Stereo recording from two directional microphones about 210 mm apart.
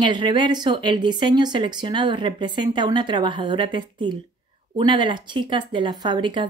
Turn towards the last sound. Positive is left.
turn(degrees=-20)  # may be behind; listen again after turning